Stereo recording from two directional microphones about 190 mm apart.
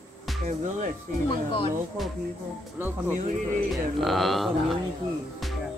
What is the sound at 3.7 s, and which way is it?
Speech, centre (ahead or behind).